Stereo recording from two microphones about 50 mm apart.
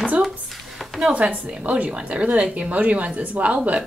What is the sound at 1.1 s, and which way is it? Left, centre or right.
A woman's voice, right.